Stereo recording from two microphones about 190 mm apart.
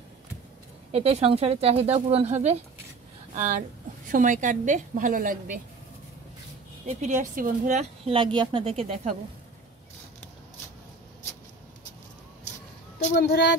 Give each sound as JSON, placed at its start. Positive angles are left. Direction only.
{"t": 0.9, "sound": "a woman's voice", "side_deg": -30}
{"t": 6.9, "sound": "a woman's voice", "side_deg": -40}
{"t": 13.1, "sound": "speech", "side_deg": 60}